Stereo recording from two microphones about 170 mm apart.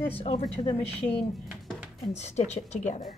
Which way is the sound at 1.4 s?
5° right (ahead or behind).